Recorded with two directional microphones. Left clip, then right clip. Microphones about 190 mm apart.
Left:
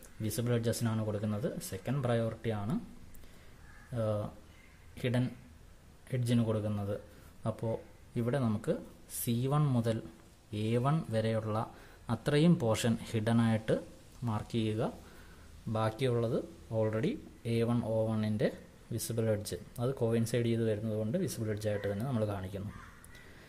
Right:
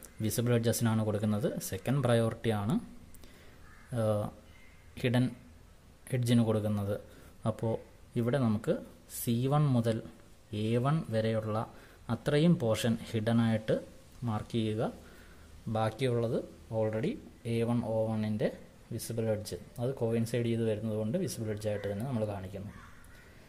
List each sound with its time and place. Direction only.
0.2 s speech: 15° right (ahead or behind)
3.9 s a man's voice: 15° right (ahead or behind); by 22.6 s 10° left (ahead or behind)